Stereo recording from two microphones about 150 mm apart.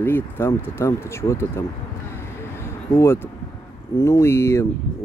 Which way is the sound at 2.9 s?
15° left (ahead or behind).